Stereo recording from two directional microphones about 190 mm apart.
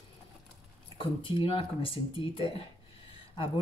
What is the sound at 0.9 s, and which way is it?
Speech, 25° left (ahead or behind).